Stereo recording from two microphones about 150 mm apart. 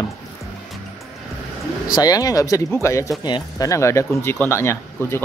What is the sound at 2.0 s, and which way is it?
Speech, 25° left (ahead or behind).